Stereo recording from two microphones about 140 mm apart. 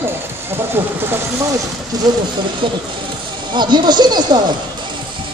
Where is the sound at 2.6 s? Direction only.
35° right (ahead or behind).